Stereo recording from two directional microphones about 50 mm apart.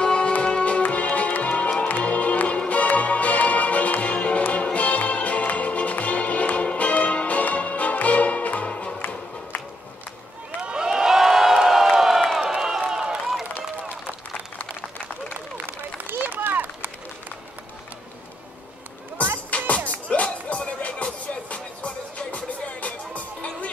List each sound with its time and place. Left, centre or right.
0.0 s music: centre
10.6 s a sound: centre
16.1 s run: right
19.5 s music: left